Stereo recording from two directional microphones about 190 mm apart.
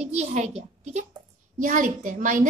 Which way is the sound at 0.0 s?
35° right (ahead or behind).